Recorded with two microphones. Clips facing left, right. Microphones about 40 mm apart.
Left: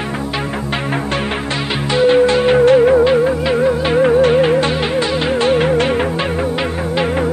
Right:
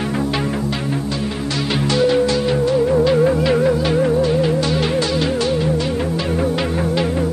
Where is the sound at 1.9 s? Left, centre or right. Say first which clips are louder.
Left 5 dB; left.